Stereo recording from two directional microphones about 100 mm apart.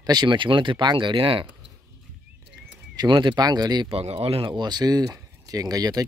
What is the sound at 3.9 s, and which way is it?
Speech, 80° right.